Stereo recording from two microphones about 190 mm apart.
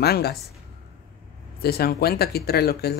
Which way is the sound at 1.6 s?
55° left (ahead or behind).